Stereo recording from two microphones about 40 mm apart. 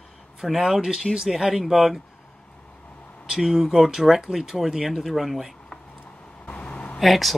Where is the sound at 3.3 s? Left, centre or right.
Centre.